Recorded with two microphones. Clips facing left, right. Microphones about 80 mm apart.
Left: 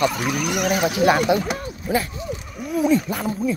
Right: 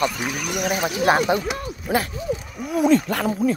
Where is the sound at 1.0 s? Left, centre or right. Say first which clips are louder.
Left 1 dB; right.